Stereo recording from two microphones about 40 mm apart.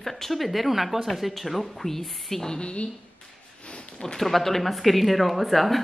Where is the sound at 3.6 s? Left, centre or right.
Left.